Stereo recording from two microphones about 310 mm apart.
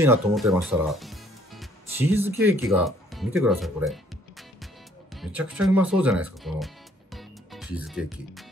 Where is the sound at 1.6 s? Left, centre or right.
Centre.